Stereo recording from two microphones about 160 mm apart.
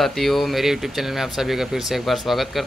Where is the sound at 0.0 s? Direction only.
Centre (ahead or behind).